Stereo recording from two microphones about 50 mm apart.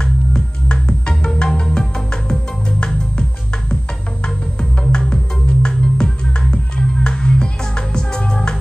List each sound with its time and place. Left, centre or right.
0.0 s music: centre
4.6 s music: centre